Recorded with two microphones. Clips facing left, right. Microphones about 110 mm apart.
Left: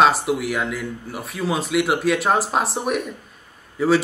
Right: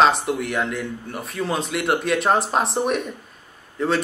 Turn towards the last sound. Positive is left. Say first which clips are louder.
# left 4 dB
turn(degrees=5)  # may be behind; listen again after turning